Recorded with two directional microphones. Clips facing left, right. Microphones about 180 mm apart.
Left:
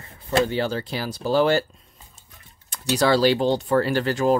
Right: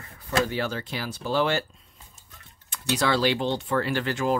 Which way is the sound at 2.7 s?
40° left (ahead or behind).